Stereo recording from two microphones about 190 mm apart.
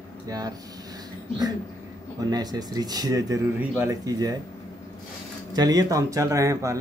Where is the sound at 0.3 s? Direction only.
20° right (ahead or behind).